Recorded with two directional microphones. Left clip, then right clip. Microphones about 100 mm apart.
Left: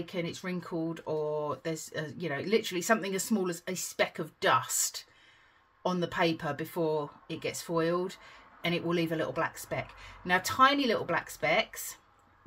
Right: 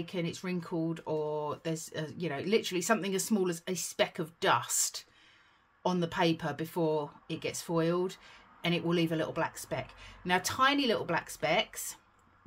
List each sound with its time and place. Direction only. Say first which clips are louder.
0.0 s speech: left 1 dB; 30° right (ahead or behind)